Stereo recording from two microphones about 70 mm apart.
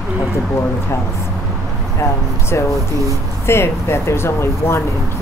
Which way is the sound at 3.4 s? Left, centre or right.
Left.